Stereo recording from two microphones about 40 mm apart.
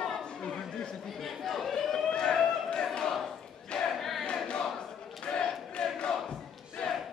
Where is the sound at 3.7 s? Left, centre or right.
Left.